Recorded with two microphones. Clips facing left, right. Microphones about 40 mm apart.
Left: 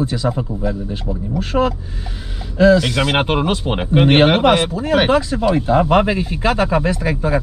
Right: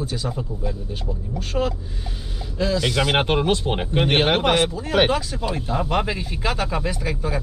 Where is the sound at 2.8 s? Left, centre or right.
Centre.